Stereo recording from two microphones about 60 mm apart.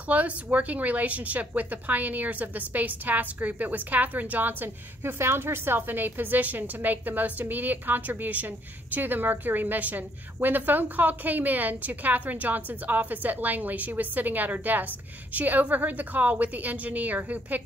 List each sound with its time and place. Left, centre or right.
0.1 s speech: right